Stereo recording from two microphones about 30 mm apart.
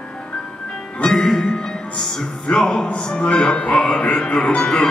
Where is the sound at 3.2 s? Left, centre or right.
Left.